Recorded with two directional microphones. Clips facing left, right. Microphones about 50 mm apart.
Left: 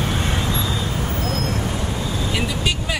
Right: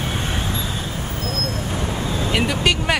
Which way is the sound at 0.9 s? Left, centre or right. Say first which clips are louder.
Left 3 dB; left.